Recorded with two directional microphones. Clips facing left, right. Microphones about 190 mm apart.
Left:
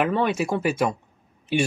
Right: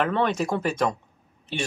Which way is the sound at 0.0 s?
10° left (ahead or behind).